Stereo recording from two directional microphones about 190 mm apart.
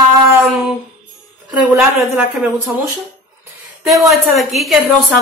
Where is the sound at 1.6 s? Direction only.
5° right (ahead or behind).